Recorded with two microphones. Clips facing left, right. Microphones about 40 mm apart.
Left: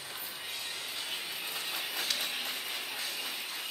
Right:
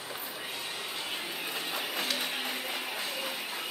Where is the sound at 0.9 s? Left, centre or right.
Centre.